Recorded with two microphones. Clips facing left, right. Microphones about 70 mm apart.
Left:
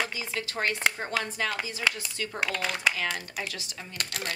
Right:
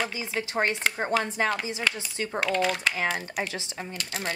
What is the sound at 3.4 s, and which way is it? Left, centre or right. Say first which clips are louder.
Speech: right 5 dB; right.